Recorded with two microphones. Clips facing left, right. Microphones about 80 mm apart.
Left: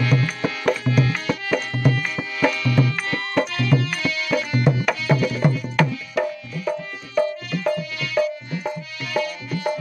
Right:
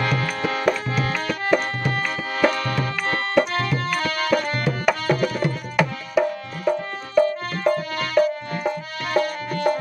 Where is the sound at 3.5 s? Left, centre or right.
Right.